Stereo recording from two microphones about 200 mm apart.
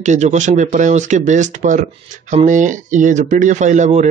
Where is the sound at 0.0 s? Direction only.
35° right (ahead or behind).